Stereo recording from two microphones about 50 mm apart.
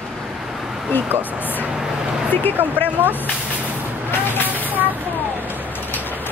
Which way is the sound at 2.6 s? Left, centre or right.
Right.